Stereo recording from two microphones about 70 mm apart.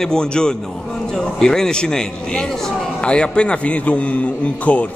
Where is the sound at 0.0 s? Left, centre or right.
Centre.